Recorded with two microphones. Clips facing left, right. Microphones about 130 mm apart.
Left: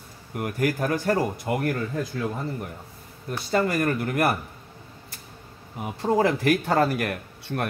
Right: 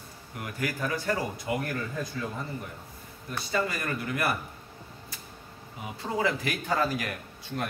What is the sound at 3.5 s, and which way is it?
Speech, 50° left (ahead or behind).